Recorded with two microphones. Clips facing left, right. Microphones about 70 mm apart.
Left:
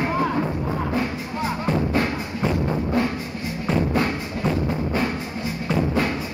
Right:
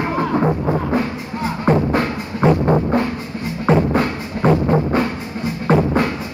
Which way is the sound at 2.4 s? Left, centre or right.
Right.